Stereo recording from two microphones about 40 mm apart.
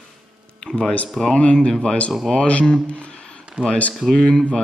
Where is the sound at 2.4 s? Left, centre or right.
Left.